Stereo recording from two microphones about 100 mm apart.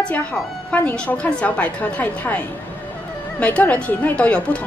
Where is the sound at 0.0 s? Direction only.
10° left (ahead or behind).